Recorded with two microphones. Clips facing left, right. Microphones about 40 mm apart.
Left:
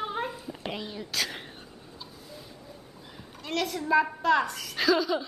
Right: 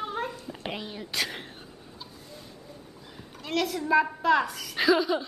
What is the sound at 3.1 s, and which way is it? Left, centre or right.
A woman's voice, centre.